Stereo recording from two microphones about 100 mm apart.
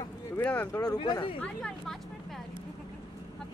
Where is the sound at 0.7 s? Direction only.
40° left (ahead or behind).